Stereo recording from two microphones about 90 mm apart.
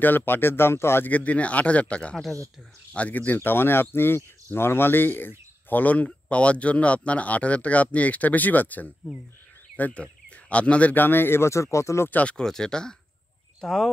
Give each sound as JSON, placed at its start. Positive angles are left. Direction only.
{"t": 0.0, "sound": "speech", "side_deg": 20}
{"t": 1.1, "sound": "speech", "side_deg": 15}
{"t": 12.1, "sound": "speech", "side_deg": 15}